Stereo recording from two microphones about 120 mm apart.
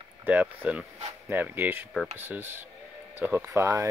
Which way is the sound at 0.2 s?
15° right (ahead or behind).